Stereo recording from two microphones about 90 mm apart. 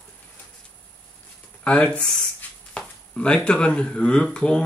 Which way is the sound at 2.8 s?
10° left (ahead or behind).